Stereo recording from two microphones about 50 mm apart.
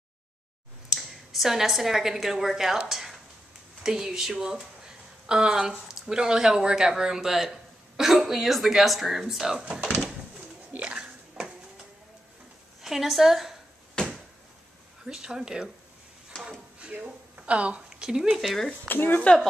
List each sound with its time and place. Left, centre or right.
0.8 s a woman's voice: centre
9.8 s drawer open or close: centre
10.8 s a sound: right
11.3 s a sound: centre
12.8 s speech: centre
14.0 s a sound: centre
15.0 s speech: centre
16.9 s speech: right
17.8 s speech: centre
18.9 s speech: left